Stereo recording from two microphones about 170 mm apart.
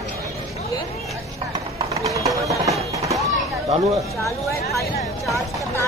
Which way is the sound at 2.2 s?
20° right (ahead or behind).